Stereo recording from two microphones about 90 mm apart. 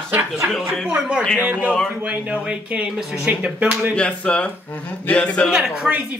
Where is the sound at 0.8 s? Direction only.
10° right (ahead or behind).